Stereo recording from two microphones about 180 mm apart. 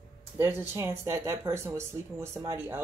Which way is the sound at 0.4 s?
15° right (ahead or behind).